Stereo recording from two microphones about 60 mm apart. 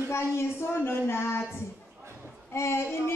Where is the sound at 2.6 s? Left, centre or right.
Left.